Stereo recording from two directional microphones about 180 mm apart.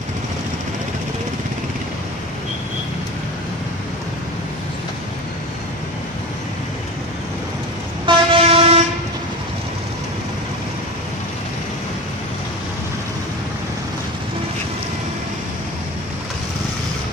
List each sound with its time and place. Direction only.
8.0 s train: 30° right (ahead or behind)